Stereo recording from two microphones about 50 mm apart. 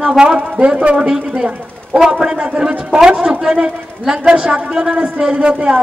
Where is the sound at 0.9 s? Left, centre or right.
Centre.